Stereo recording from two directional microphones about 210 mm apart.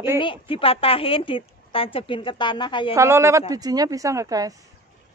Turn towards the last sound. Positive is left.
turn(degrees=-15)  # may be behind; listen again after turning